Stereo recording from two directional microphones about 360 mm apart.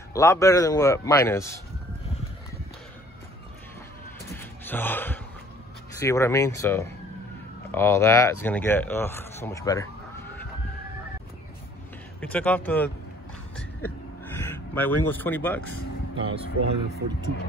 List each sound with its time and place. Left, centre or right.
0.1 s speech: centre
4.3 s gasp: centre
5.9 s speech: centre
12.2 s speech: centre
14.7 s speech: centre
16.4 s speech: left